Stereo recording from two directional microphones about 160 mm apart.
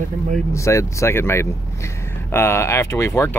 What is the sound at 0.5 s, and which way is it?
Speech, 20° left (ahead or behind).